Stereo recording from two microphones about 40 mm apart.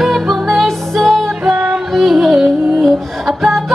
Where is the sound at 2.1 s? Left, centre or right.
Centre.